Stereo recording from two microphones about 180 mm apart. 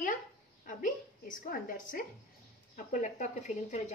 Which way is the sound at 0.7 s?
45° left (ahead or behind).